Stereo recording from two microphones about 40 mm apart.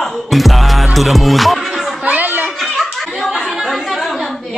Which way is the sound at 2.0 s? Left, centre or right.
Right.